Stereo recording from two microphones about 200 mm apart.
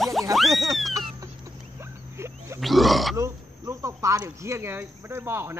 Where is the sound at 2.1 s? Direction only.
15° right (ahead or behind).